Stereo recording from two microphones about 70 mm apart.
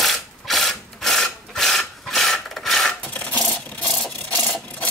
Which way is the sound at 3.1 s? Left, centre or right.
Centre.